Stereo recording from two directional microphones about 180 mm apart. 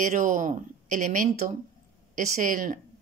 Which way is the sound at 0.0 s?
45° right (ahead or behind).